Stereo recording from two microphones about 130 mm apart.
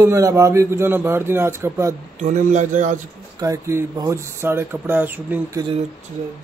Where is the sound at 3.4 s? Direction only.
25° right (ahead or behind).